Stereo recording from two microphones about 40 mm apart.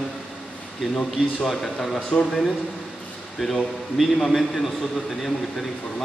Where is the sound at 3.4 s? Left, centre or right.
Centre.